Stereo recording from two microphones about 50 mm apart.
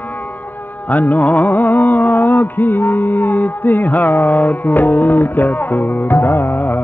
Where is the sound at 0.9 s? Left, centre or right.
Left.